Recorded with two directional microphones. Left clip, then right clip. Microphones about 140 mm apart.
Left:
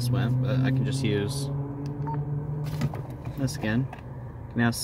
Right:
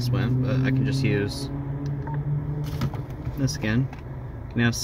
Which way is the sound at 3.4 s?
10° right (ahead or behind).